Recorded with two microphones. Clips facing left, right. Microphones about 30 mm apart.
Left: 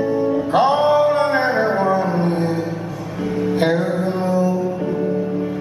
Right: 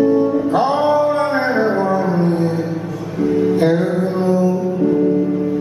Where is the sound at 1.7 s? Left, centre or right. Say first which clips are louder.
Right 1 dB; centre.